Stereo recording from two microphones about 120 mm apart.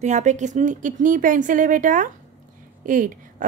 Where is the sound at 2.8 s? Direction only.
90° right.